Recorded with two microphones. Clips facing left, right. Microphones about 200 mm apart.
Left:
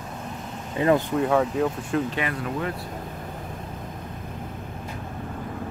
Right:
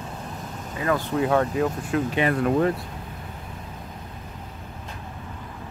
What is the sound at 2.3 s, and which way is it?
Speech, 50° right (ahead or behind).